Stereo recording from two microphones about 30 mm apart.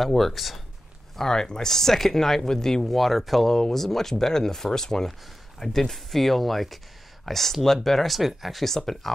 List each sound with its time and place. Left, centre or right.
0.0 s speech: centre
1.2 s speech: left
3.0 s speech: centre
8.6 s speech: centre